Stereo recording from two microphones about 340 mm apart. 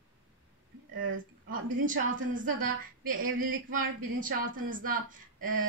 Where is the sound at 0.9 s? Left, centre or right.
Right.